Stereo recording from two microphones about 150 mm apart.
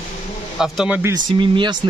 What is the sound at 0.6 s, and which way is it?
Speech, 5° right (ahead or behind).